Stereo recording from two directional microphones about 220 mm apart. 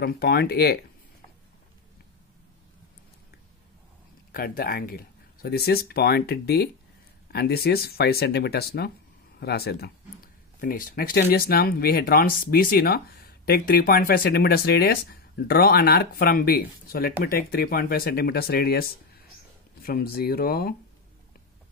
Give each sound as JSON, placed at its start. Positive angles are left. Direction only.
{"t": 0.0, "sound": "speech", "side_deg": 45}
{"t": 4.3, "sound": "speech", "side_deg": 40}